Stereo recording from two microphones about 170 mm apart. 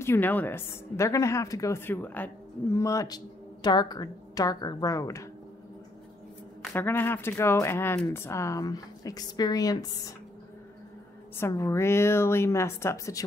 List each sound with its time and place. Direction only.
0.0 s a woman's voice: 15° left (ahead or behind)
6.7 s a woman's voice: 10° left (ahead or behind)
11.3 s a woman's voice: 15° left (ahead or behind)